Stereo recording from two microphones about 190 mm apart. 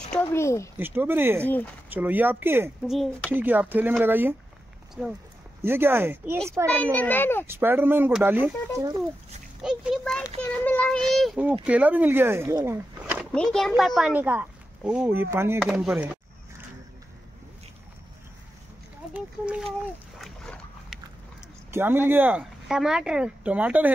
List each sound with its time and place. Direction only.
0.1 s speech: 15° left (ahead or behind)
0.7 s speech: 10° right (ahead or behind)
2.9 s speech: centre (ahead or behind)
6.7 s a child's voice: 5° left (ahead or behind)
7.4 s speech: 10° right (ahead or behind)
9.6 s a child's voice: 5° right (ahead or behind)
11.1 s speech: 5° right (ahead or behind)
19.1 s speech: 5° right (ahead or behind)
20.2 s boat: centre (ahead or behind)
21.6 s speech: 10° right (ahead or behind)